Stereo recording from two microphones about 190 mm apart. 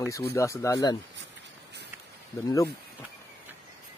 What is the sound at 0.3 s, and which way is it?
Speech, 15° left (ahead or behind).